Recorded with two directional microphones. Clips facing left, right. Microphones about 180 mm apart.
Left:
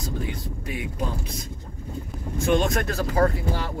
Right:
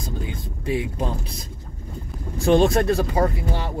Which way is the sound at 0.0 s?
25° right (ahead or behind).